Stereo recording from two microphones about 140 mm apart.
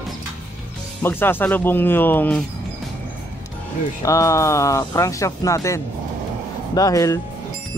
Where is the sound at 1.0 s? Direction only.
15° left (ahead or behind).